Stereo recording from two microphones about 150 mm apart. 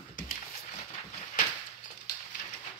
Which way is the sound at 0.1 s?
65° left (ahead or behind).